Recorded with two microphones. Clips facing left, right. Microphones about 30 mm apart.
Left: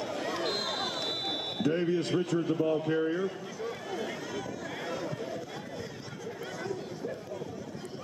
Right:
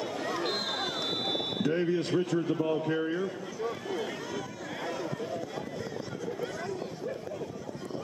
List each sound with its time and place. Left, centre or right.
0.2 s a sound: centre
2.6 s speech: centre
4.8 s chatter: centre